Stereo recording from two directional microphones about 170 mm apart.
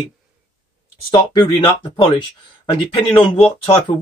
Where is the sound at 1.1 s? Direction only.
25° left (ahead or behind).